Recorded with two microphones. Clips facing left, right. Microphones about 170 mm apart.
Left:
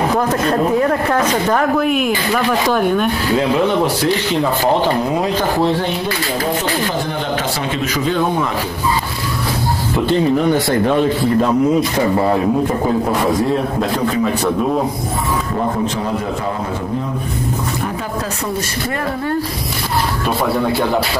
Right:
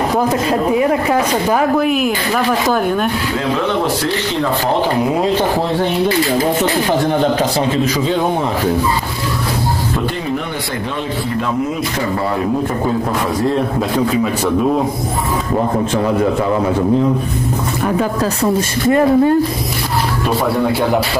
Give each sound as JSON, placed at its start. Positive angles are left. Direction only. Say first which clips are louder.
{"t": 0.5, "sound": "speech", "louder": "left 1 dB", "side_deg": -10}
{"t": 18.9, "sound": "speech", "louder": "right 13 dB", "side_deg": -20}